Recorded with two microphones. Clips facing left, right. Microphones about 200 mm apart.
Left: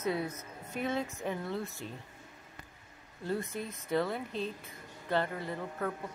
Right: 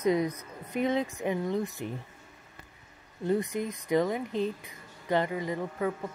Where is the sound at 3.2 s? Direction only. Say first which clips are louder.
Right 7 dB; 15° right (ahead or behind).